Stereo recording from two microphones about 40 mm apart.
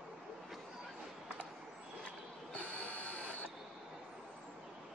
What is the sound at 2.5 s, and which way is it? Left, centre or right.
Printer, left.